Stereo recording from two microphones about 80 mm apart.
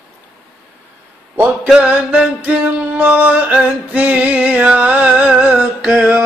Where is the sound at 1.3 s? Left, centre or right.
Centre.